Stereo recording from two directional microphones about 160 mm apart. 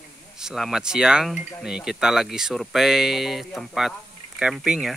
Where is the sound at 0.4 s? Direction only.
5° right (ahead or behind).